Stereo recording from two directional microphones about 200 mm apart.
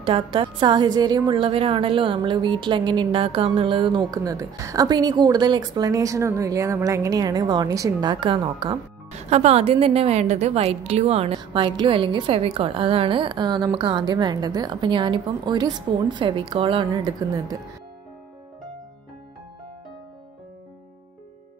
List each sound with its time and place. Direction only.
0.0 s a woman's voice: 25° right (ahead or behind)
9.3 s a woman's voice: 35° right (ahead or behind)